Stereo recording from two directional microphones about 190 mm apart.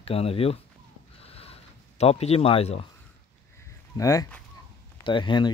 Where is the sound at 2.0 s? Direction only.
35° left (ahead or behind).